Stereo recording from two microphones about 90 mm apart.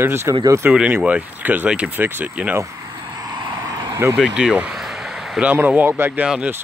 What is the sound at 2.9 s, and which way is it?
Vehicle, 50° right (ahead or behind).